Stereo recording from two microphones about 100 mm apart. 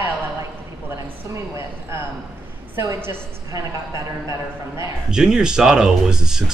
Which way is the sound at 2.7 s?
25° right (ahead or behind).